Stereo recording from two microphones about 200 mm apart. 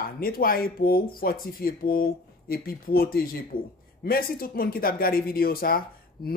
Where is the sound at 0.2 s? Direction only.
45° left (ahead or behind).